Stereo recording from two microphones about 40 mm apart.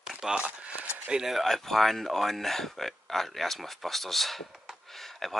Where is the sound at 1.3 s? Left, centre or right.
Centre.